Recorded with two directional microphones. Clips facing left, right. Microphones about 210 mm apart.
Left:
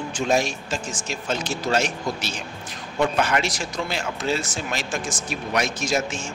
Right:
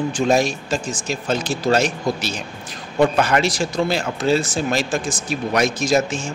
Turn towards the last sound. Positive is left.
turn(degrees=-35)  # may be behind; listen again after turning